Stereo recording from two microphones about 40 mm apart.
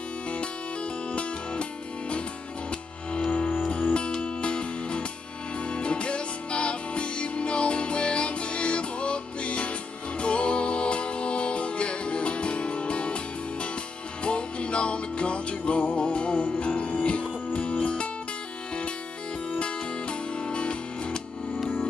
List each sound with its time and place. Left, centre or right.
1.1 s music: left
19.6 s music: left